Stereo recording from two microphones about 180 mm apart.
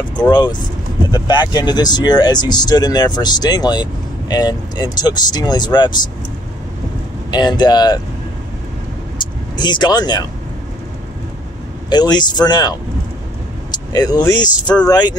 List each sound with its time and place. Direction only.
0.1 s speech: 25° left (ahead or behind)
7.2 s speech: 25° left (ahead or behind)
9.6 s speech: 25° left (ahead or behind)
11.9 s speech: 25° left (ahead or behind)